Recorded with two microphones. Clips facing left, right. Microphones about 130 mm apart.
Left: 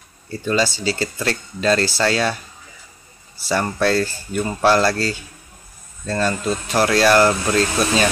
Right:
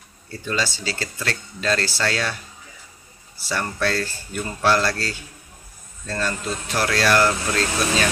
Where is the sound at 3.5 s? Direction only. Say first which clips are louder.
Left 5 dB; 35° left (ahead or behind).